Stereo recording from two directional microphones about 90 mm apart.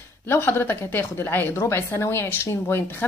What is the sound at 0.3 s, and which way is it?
A woman's voice, 25° left (ahead or behind).